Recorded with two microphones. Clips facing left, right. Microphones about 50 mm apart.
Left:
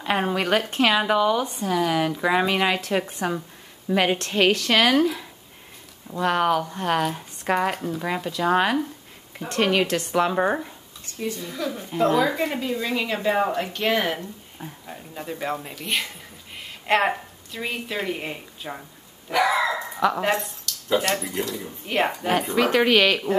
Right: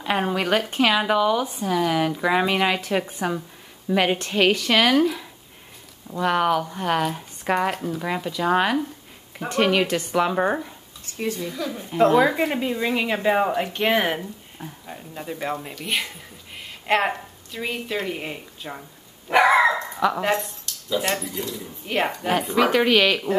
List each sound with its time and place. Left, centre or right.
0.0 s speech: centre
12.1 s speech: centre
14.2 s a woman's voice: centre
19.3 s dog: right
20.0 s speech: centre
20.7 s a sound: right
21.8 s speech: centre